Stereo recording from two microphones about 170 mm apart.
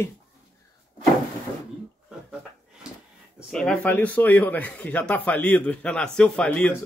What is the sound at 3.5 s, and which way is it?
Speech, 5° left (ahead or behind).